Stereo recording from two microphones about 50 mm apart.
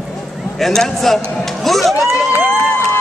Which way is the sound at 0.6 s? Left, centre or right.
Centre.